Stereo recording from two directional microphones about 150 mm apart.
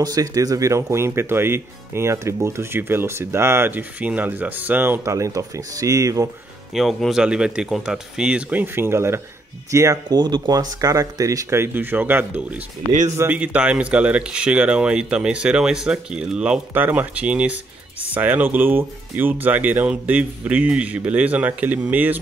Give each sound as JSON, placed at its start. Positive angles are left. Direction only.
{"t": 0.0, "sound": "speech", "side_deg": -25}
{"t": 6.7, "sound": "speech", "side_deg": 0}